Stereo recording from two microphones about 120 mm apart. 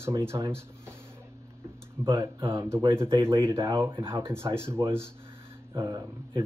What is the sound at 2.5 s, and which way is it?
Speech, 25° right (ahead or behind).